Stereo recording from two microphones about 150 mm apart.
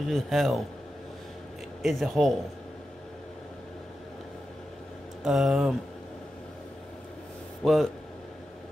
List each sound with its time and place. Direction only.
0.1 s a man's voice: centre (ahead or behind)
1.8 s a man's voice: centre (ahead or behind)
5.2 s a man's voice: centre (ahead or behind)
7.6 s a man's voice: centre (ahead or behind)